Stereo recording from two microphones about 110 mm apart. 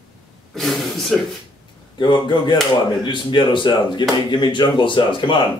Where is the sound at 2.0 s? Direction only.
45° left (ahead or behind).